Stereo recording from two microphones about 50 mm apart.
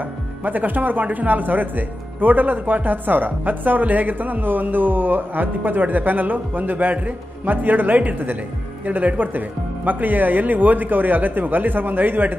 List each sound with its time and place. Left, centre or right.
0.0 s speech: right